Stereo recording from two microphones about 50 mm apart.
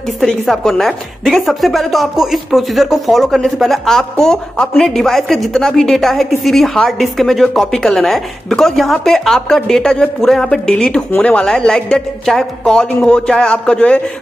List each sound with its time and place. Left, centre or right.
0.2 s a woman's voice: centre
11.1 s speech: left
11.3 s speech: centre
12.8 s speech: left
13.3 s speech: centre
13.7 s speech: left